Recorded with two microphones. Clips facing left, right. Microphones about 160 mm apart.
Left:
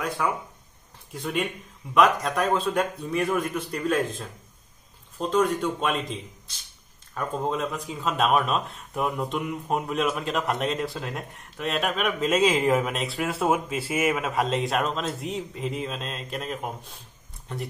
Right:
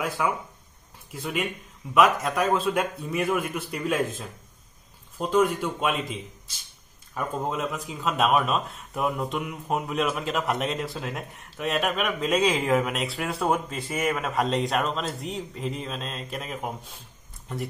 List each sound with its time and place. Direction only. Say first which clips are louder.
0.2 s a man's voice: even; 5° right (ahead or behind)
5.2 s a man's voice: even; 10° right (ahead or behind)
7.2 s speech: left 1 dB; 5° right (ahead or behind)